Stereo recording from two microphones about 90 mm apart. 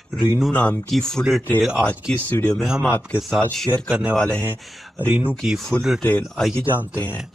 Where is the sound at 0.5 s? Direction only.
20° left (ahead or behind).